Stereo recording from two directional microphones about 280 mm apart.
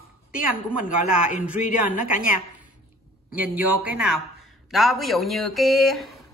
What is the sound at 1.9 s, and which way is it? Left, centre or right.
Speech, left.